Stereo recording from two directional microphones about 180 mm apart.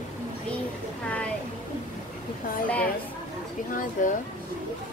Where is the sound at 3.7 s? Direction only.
45° left (ahead or behind).